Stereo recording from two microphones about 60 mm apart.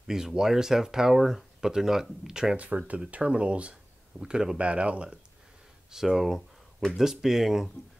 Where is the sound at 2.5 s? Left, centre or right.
Right.